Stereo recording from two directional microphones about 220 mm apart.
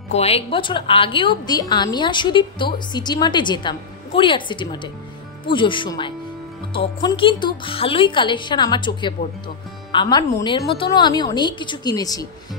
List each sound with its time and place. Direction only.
0.1 s a woman's voice: 25° left (ahead or behind)